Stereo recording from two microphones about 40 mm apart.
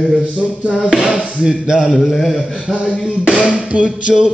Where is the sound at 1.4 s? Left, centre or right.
Right.